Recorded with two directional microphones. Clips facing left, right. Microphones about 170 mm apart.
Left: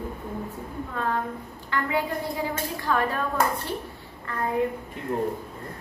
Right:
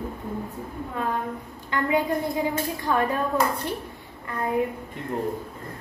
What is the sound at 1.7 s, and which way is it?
Speech, 20° right (ahead or behind).